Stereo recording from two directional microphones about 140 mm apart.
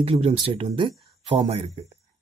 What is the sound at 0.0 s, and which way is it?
Speech, 45° right (ahead or behind).